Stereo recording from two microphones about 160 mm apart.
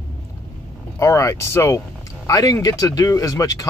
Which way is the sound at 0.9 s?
20° left (ahead or behind).